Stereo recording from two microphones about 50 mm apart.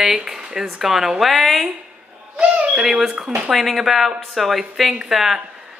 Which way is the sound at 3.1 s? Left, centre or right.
Right.